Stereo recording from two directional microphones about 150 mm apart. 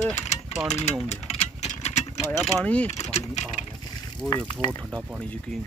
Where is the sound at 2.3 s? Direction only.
5° left (ahead or behind).